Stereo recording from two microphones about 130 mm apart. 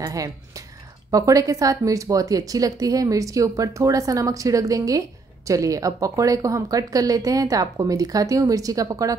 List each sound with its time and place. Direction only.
0.0 s speech: 25° right (ahead or behind)